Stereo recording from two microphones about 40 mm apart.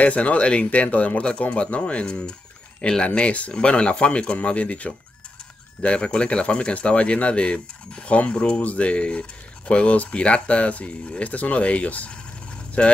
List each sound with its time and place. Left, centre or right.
0.0 s speech: left
2.0 s speech: centre